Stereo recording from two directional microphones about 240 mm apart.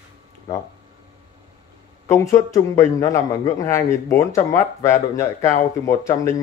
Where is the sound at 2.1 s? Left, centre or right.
Centre.